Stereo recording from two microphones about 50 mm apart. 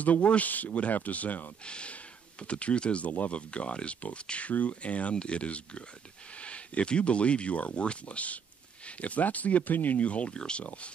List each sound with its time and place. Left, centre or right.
0.0 s speech: left